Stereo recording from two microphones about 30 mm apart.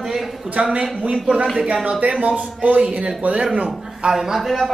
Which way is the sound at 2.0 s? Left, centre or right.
Right.